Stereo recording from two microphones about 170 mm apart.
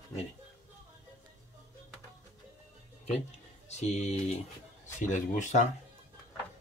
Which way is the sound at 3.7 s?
40° left (ahead or behind).